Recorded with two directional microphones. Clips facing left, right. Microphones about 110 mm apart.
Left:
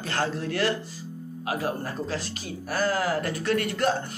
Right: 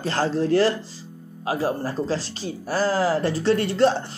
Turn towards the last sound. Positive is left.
turn(degrees=-30)  # may be behind; listen again after turning